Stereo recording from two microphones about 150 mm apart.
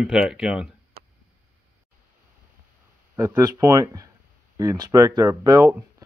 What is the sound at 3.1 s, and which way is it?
Speech, 15° right (ahead or behind).